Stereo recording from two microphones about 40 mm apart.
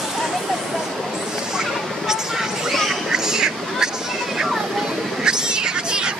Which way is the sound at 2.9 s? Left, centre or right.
Centre.